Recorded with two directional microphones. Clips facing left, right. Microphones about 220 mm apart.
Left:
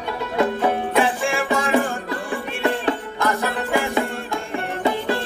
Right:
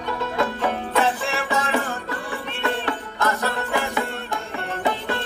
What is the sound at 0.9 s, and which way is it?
Music, 10° left (ahead or behind).